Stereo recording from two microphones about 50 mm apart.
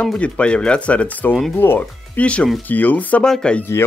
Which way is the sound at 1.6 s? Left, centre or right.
Left.